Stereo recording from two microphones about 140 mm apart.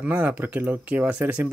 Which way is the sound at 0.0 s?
10° right (ahead or behind).